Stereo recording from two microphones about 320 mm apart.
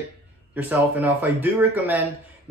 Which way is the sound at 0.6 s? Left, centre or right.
Centre.